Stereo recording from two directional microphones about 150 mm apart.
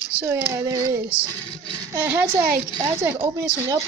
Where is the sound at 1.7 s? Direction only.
15° right (ahead or behind).